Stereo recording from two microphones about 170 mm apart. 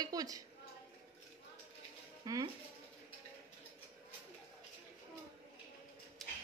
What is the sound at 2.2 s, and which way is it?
Speech, 20° right (ahead or behind).